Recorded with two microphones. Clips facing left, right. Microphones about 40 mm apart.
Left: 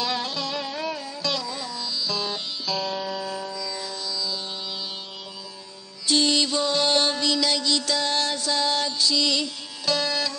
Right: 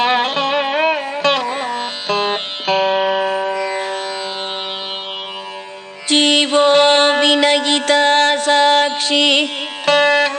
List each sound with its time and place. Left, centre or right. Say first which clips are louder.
0.0 s music: right 12 dB; right
6.0 s music: right 8 dB; right